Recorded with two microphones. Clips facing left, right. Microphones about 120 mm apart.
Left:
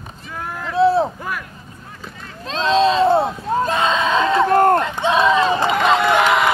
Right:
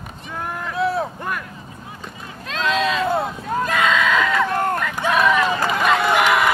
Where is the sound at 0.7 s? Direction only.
30° left (ahead or behind).